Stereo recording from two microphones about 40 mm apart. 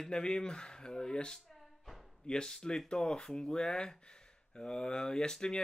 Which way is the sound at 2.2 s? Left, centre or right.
Centre.